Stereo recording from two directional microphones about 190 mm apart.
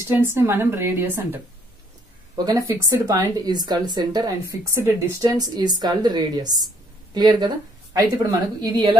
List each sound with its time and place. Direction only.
0.1 s speech: 10° right (ahead or behind)